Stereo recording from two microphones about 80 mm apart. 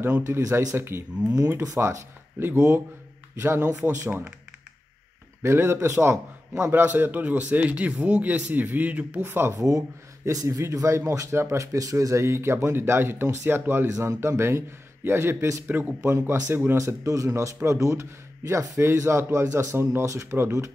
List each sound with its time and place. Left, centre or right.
0.0 s speech: right
5.4 s a man's voice: right
6.7 s speech: right
9.5 s speech: right
15.6 s speech: right
16.0 s speech: right